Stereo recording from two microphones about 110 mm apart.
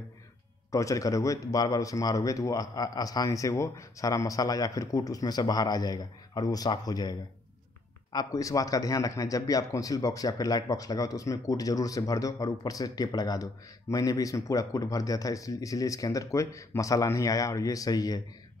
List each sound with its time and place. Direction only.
0.7 s a man's voice: 30° left (ahead or behind)